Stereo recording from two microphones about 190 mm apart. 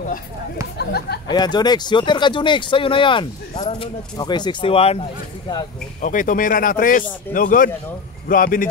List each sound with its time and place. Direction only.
0.7 s speech: 55° left (ahead or behind)
1.2 s speech: 20° left (ahead or behind)
5.9 s speech: 45° left (ahead or behind)